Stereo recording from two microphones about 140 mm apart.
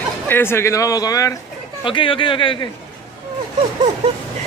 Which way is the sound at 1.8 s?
35° left (ahead or behind).